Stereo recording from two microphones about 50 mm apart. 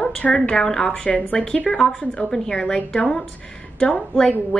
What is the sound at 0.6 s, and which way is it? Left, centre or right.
A woman's voice, centre.